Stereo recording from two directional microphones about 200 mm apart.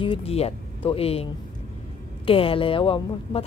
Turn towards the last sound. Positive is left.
turn(degrees=25)  # may be behind; listen again after turning